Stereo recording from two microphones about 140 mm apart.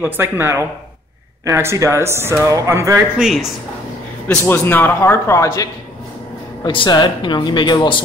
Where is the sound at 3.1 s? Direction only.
5° right (ahead or behind).